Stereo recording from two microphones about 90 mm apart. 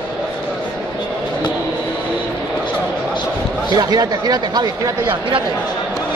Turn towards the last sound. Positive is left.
turn(degrees=-45)  # may be behind; listen again after turning